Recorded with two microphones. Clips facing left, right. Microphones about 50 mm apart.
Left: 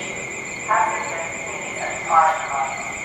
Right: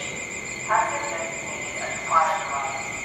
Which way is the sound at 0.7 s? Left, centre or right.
Centre.